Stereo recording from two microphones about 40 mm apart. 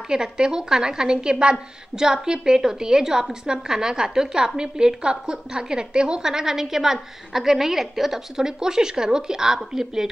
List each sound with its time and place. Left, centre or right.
0.1 s a woman's voice: centre